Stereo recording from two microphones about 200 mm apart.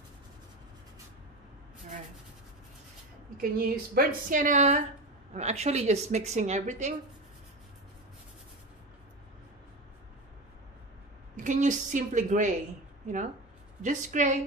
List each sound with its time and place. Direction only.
3.3 s speech: 50° right (ahead or behind)
11.3 s speech: 40° right (ahead or behind)
13.8 s speech: 35° right (ahead or behind)